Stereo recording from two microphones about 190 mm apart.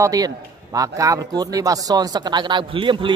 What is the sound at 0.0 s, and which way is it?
Speech, 20° right (ahead or behind).